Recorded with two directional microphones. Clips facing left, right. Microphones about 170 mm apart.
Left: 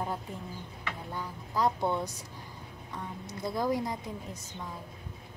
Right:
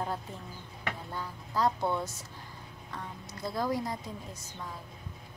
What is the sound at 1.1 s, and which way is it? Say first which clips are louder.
Speech: left 2 dB; 15° left (ahead or behind).